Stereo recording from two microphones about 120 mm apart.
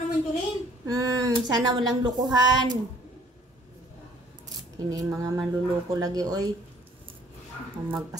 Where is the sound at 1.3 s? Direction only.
35° right (ahead or behind).